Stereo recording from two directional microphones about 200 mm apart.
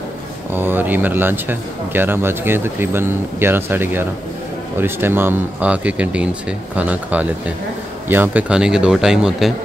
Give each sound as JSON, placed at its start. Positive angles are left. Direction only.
{"t": 0.5, "sound": "speech", "side_deg": -10}